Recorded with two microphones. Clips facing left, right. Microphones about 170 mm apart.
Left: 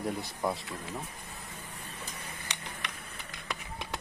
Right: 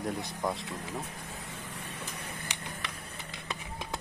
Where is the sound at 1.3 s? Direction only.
90° right.